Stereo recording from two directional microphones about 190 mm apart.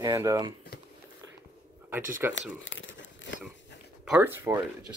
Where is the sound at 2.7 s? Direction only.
80° left.